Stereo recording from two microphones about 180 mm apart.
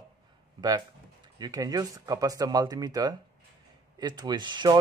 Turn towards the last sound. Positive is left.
turn(degrees=-25)  # may be behind; listen again after turning